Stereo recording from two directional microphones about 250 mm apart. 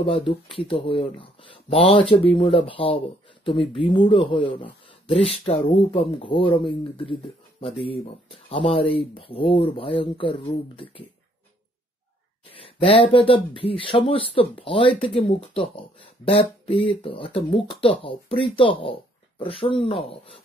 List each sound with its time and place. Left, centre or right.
0.0 s speech: left
12.4 s speech: left